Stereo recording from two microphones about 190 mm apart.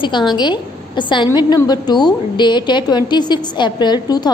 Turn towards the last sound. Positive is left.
turn(degrees=20)  # may be behind; listen again after turning